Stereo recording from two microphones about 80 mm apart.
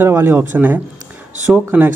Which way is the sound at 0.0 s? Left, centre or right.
Right.